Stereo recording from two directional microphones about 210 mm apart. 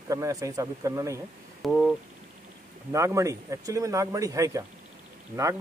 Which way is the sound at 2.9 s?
15° right (ahead or behind).